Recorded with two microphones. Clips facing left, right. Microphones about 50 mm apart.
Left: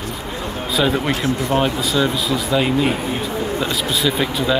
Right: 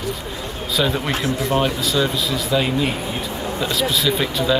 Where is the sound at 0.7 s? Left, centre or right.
Centre.